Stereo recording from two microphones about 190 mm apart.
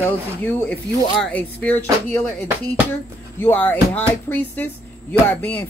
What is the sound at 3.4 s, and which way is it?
Speech, 10° left (ahead or behind).